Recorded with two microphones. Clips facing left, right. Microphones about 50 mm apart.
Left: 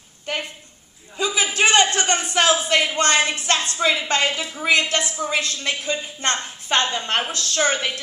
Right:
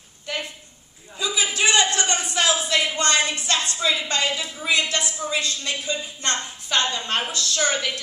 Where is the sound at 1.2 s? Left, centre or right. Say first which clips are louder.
Left 3 dB; left.